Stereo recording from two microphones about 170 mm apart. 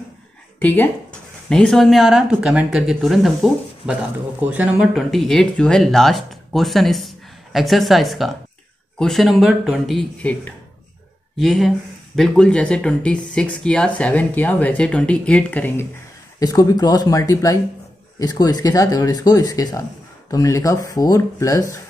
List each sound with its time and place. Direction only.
0.6 s a woman's voice: 10° left (ahead or behind)
16.3 s speech: 20° left (ahead or behind)